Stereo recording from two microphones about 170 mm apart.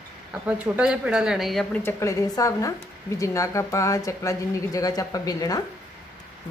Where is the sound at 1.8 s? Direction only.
15° left (ahead or behind).